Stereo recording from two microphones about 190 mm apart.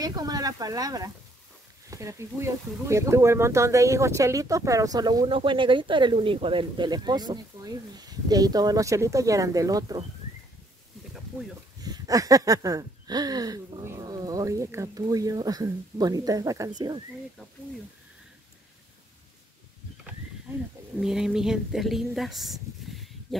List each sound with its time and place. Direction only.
0.0 s speech: 20° right (ahead or behind)
11.8 s speech: 20° right (ahead or behind)
20.5 s speech: 15° right (ahead or behind)
21.0 s speech: 5° right (ahead or behind)